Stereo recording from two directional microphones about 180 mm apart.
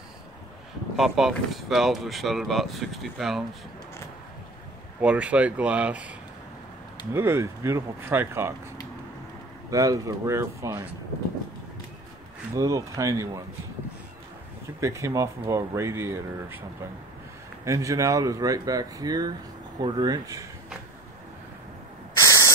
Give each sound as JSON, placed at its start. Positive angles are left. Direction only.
{"t": 0.9, "sound": "speech", "side_deg": 0}
{"t": 5.0, "sound": "speech", "side_deg": -5}
{"t": 9.7, "sound": "speech", "side_deg": -20}
{"t": 12.5, "sound": "speech", "side_deg": -20}
{"t": 14.8, "sound": "speech", "side_deg": -15}
{"t": 17.6, "sound": "speech", "side_deg": -20}